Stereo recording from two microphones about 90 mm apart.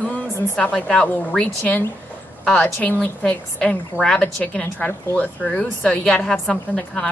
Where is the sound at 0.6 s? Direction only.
10° left (ahead or behind).